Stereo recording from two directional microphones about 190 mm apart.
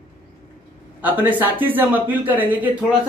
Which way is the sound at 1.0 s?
10° right (ahead or behind).